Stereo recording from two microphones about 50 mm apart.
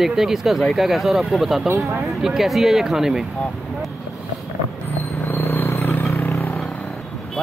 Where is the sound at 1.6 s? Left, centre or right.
Right.